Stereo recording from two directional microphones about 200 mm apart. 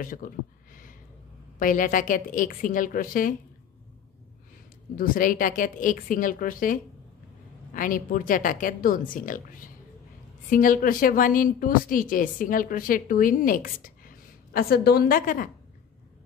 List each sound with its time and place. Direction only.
0.0 s a woman's voice: 45° left (ahead or behind)
1.6 s a woman's voice: 40° left (ahead or behind)
4.9 s a woman's voice: 45° left (ahead or behind)